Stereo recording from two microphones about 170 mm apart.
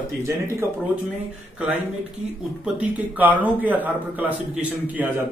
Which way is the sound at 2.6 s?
10° right (ahead or behind).